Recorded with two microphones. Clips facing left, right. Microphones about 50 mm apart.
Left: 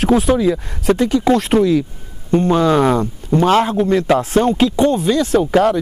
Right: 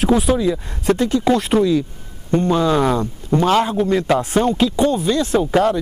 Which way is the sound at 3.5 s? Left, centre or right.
Left.